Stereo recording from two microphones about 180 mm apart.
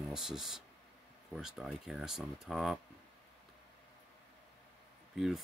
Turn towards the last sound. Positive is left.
turn(degrees=0)  # may be behind; listen again after turning